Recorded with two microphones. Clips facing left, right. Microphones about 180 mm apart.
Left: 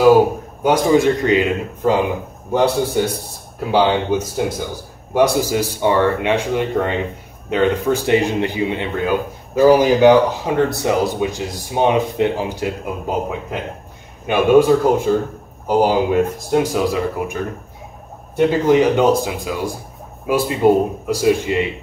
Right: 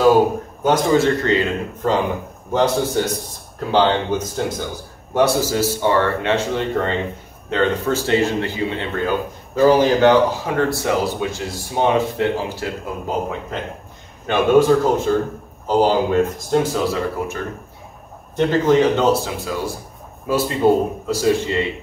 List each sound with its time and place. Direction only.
0.7 s a man's voice: 15° left (ahead or behind)
3.0 s a man's voice: 10° left (ahead or behind)